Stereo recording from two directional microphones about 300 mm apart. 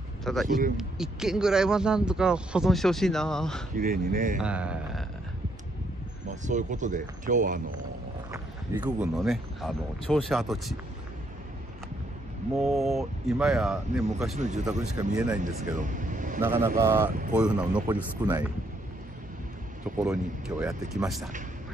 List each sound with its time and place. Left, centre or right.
0.2 s a man's voice: centre
3.7 s speech: right
4.4 s speech: centre
6.2 s speech: right
8.3 s a sound: centre
9.1 s speech: centre
12.5 s speech: centre
14.3 s speech: right
14.6 s speech: centre
15.4 s speech: right
16.3 s speech: centre
20.0 s speech: centre